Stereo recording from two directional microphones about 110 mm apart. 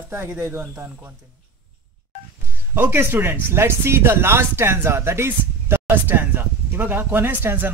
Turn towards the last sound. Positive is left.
turn(degrees=-15)  # may be behind; listen again after turning